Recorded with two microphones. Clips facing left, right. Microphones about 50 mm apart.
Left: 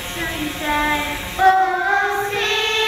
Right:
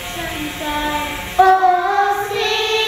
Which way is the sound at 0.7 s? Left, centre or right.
Left.